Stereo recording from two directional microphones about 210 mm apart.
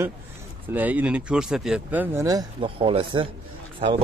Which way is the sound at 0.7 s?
10° right (ahead or behind).